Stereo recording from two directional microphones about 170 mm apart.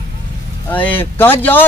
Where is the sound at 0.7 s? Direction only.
10° left (ahead or behind).